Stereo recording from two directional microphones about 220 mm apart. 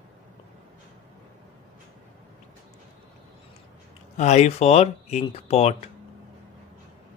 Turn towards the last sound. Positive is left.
turn(degrees=30)  # may be behind; listen again after turning